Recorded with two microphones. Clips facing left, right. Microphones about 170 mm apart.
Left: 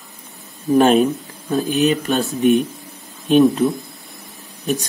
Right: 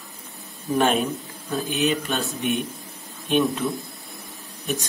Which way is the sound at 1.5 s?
40° left (ahead or behind).